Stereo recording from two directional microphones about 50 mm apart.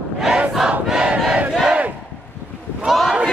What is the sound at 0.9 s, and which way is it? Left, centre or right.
Battle cry, right.